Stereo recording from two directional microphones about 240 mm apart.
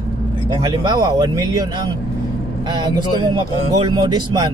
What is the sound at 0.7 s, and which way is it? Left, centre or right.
A man's voice, centre.